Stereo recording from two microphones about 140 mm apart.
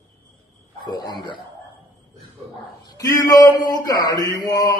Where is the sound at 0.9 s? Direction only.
30° left (ahead or behind).